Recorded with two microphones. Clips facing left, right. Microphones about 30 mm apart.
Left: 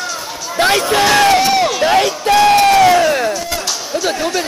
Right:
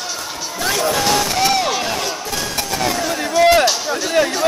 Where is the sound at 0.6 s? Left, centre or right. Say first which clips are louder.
Left 6 dB; left.